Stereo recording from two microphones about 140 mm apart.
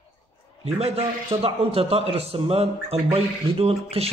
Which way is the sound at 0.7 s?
45° right (ahead or behind).